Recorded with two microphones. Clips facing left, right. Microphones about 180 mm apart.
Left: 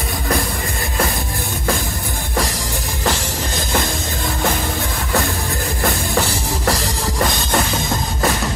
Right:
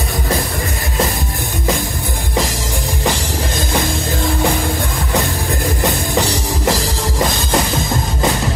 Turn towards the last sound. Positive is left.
turn(degrees=-20)  # may be behind; listen again after turning